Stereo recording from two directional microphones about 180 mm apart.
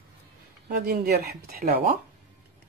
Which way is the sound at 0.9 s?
60° right (ahead or behind).